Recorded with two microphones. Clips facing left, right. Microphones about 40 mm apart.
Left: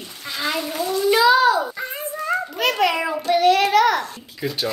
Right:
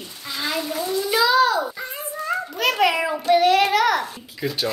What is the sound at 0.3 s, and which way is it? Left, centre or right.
Goat, centre.